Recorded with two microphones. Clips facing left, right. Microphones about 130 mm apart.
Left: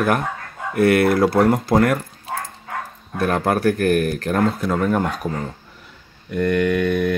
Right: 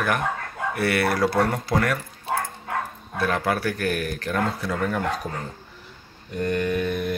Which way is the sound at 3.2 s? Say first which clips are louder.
Left 5 dB; 45° left (ahead or behind).